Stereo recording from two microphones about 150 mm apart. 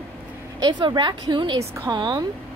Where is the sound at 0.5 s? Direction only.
30° right (ahead or behind).